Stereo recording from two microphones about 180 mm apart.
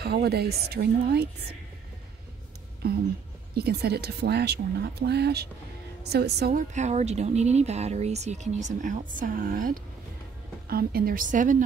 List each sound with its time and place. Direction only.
0.0 s speech: 60° right (ahead or behind)
2.8 s speech: 60° right (ahead or behind)
6.7 s speech: 40° right (ahead or behind)